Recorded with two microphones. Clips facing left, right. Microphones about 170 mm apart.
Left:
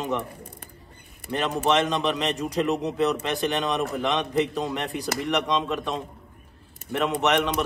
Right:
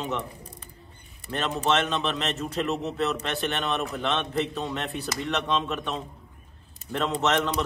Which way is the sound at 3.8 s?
Centre (ahead or behind).